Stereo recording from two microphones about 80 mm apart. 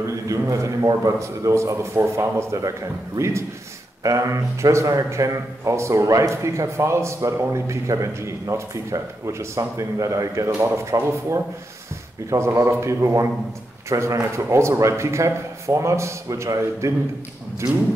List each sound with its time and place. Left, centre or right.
0.0 s a man's voice: right
4.0 s a man's voice: right